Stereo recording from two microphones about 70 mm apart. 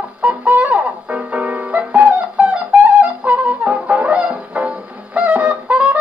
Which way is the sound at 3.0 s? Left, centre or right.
Right.